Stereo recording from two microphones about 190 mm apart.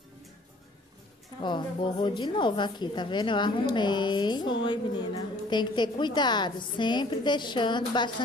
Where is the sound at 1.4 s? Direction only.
25° left (ahead or behind).